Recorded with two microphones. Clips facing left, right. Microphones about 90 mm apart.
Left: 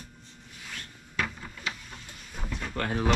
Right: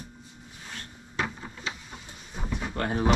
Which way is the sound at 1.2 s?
20° right (ahead or behind).